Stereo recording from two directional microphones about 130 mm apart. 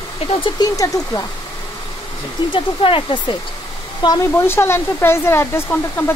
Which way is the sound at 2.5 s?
40° left (ahead or behind).